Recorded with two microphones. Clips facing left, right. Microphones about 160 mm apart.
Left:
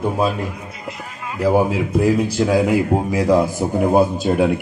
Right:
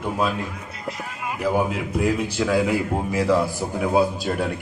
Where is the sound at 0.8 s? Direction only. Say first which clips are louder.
Right 2 dB; 5° right (ahead or behind).